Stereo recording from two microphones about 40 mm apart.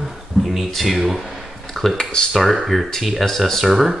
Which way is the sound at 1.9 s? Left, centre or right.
Centre.